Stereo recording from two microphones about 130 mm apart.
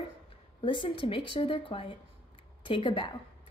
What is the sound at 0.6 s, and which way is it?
A woman's voice, 40° left (ahead or behind).